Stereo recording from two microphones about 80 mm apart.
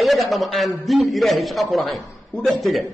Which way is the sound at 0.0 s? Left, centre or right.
Centre.